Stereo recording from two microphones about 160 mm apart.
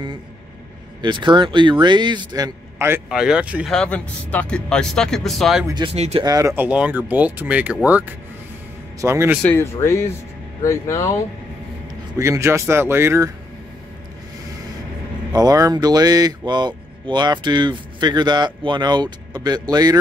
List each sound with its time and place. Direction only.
1.0 s speech: 30° right (ahead or behind)
3.1 s speech: 5° right (ahead or behind)
3.7 s speech: 5° left (ahead or behind)
5.7 s speech: 30° right (ahead or behind)
5.9 s speech: 40° right (ahead or behind)
6.2 s speech: 20° right (ahead or behind)
9.4 s speech: 15° left (ahead or behind)
12.2 s speech: 20° right (ahead or behind)
15.3 s speech: 20° right (ahead or behind)